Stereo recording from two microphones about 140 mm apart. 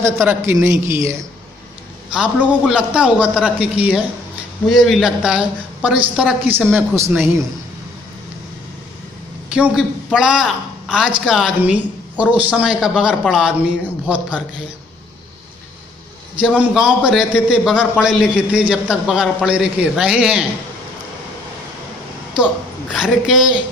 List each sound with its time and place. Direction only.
0.0 s a man's voice: 20° right (ahead or behind)
2.1 s a woman's voice: 5° right (ahead or behind)
9.5 s a woman's voice: 5° right (ahead or behind)
16.3 s a woman's voice: 10° right (ahead or behind)
22.9 s a woman's voice: 5° right (ahead or behind)